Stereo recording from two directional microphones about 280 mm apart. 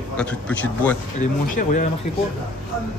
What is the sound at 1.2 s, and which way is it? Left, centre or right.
Speech, left.